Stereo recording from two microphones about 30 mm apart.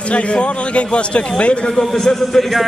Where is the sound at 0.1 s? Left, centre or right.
Left.